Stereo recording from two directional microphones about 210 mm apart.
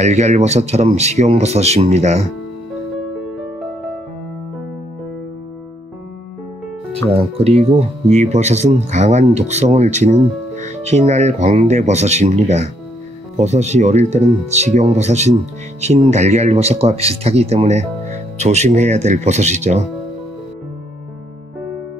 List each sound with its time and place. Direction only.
0.0 s speech: 35° right (ahead or behind)
7.1 s speech: 30° right (ahead or behind)